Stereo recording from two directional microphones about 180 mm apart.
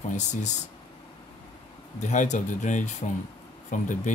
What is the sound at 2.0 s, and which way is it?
Speech, 40° left (ahead or behind).